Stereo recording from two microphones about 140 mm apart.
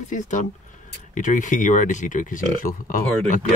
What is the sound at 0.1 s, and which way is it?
Speech, 60° left (ahead or behind).